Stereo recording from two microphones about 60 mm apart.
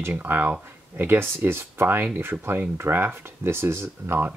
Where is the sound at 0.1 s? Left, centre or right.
Right.